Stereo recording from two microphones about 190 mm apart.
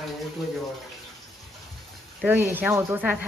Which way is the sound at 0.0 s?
Centre (ahead or behind).